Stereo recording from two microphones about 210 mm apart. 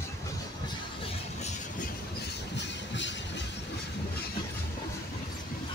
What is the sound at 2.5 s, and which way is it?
Music, 55° left (ahead or behind).